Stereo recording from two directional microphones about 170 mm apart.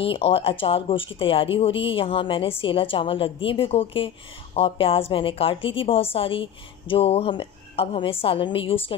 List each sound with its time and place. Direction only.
0.0 s a woman's voice: 35° left (ahead or behind)